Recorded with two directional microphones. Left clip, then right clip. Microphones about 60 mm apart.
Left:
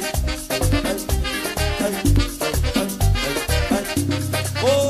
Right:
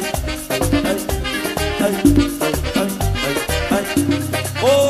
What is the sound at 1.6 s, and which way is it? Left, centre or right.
Music, left.